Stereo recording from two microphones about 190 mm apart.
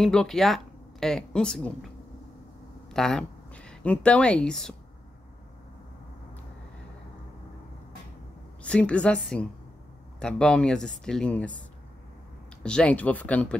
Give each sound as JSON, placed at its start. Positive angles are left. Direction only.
{"t": 0.0, "sound": "speech", "side_deg": 5}
{"t": 2.9, "sound": "speech", "side_deg": 5}
{"t": 8.6, "sound": "speech", "side_deg": 5}
{"t": 12.6, "sound": "speech", "side_deg": 5}